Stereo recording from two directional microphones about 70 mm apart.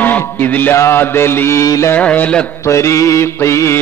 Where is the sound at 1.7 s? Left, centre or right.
Left.